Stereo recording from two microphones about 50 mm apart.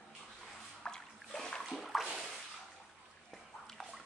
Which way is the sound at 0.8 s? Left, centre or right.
Centre.